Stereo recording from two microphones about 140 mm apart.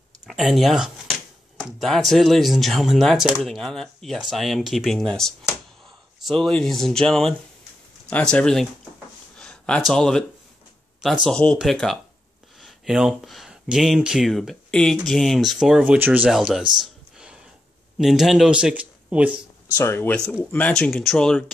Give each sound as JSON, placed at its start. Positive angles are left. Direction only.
{"t": 0.3, "sound": "speech", "side_deg": 0}
{"t": 11.2, "sound": "speech", "side_deg": 5}
{"t": 16.8, "sound": "a sound", "side_deg": -5}
{"t": 17.9, "sound": "speech", "side_deg": 0}
{"t": 19.8, "sound": "speech", "side_deg": 15}